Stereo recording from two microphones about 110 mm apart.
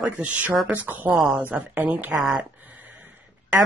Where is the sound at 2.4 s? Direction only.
15° right (ahead or behind).